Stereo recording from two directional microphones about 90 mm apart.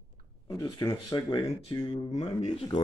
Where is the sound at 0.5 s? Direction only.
45° left (ahead or behind); by 2.8 s 60° left (ahead or behind).